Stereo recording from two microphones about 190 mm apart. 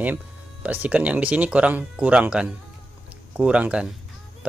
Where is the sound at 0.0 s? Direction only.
10° right (ahead or behind).